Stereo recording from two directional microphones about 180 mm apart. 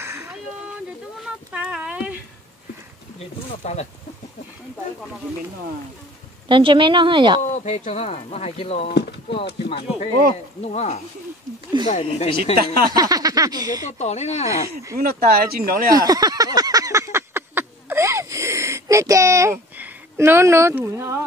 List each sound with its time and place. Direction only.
0.0 s a sound: 15° right (ahead or behind)
1.5 s a sound: 10° right (ahead or behind)
3.4 s speech: 40° left (ahead or behind)
6.5 s a woman's voice: 25° right (ahead or behind)
7.5 s speech: 40° left (ahead or behind)
10.6 s speech: 40° left (ahead or behind)
12.5 s speech: 55° right (ahead or behind)
12.9 s a woman's voice: 20° right (ahead or behind)
13.8 s speech: 40° left (ahead or behind)
15.0 s speech: 55° right (ahead or behind)
15.9 s a sound: 20° right (ahead or behind)